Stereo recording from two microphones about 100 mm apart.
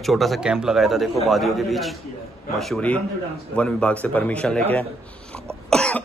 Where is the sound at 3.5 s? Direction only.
10° left (ahead or behind).